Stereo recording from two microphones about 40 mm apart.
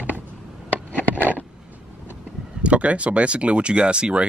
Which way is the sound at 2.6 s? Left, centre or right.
Right.